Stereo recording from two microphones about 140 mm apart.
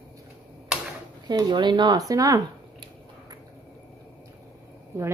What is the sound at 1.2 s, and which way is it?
Speech, 30° right (ahead or behind).